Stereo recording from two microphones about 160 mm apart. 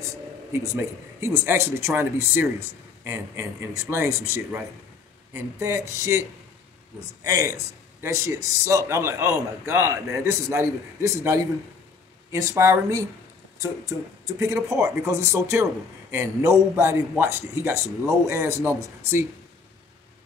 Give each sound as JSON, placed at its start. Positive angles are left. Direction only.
{"t": 0.5, "sound": "a man's voice", "side_deg": -15}
{"t": 7.2, "sound": "a man's voice", "side_deg": -20}